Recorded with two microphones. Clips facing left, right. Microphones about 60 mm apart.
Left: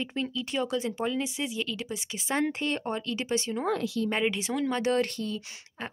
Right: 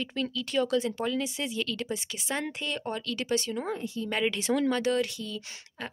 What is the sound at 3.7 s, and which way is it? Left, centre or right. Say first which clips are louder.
Speech: left 4 dB; left.